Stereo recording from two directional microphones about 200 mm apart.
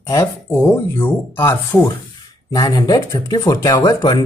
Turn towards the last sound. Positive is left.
turn(degrees=15)  # may be behind; listen again after turning